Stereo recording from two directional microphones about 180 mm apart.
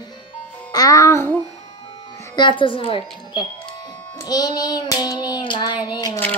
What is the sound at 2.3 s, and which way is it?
Music, 25° left (ahead or behind).